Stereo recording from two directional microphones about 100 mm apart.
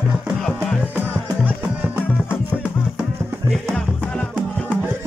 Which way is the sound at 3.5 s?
5° left (ahead or behind).